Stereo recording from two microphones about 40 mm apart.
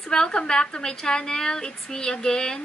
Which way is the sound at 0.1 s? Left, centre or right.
Centre.